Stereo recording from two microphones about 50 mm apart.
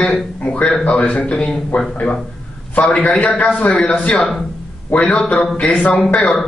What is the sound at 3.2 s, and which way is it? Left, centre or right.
Speech, left.